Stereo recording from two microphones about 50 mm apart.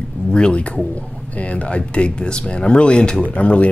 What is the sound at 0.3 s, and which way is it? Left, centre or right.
Speech, centre.